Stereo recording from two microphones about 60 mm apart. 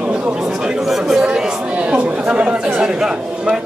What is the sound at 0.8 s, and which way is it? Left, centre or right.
Speech, centre.